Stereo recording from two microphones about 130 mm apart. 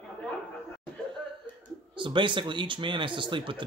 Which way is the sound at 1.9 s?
40° right (ahead or behind).